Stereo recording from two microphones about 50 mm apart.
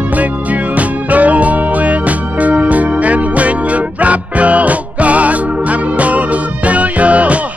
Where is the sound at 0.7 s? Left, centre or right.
Right.